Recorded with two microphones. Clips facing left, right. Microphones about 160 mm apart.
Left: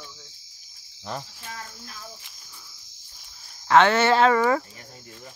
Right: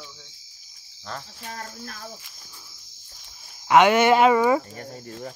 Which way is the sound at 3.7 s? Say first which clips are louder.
Right 2 dB; 15° right (ahead or behind).